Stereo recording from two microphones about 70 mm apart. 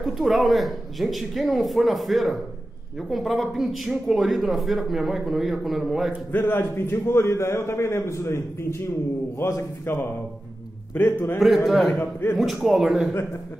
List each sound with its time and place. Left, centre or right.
0.0 s speech: centre
6.3 s a man's voice: left
11.0 s a man's voice: left
11.3 s speech: centre
12.0 s a man's voice: left
12.6 s speech: centre